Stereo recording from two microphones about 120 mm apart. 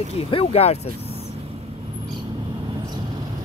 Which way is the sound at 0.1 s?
55° left (ahead or behind).